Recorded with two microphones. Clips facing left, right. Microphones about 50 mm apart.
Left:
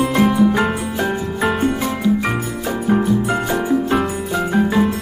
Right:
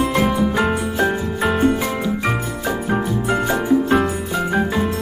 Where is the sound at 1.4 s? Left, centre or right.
Centre.